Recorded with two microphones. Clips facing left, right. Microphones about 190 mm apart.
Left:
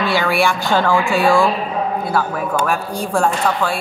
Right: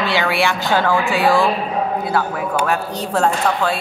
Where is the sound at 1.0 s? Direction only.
Centre (ahead or behind).